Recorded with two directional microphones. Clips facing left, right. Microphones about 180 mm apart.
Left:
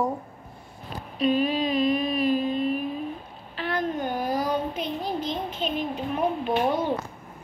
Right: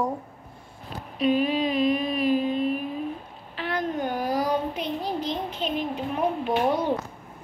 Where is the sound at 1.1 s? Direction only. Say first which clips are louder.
Right 1 dB; 15° right (ahead or behind).